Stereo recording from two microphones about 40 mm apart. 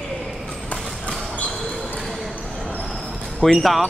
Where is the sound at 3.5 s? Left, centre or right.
Centre.